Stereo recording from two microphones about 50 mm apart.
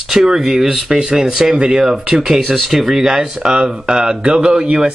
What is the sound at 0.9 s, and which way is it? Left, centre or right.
Speech, centre.